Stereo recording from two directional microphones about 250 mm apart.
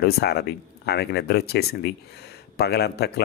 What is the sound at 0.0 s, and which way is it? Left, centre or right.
Speech, left.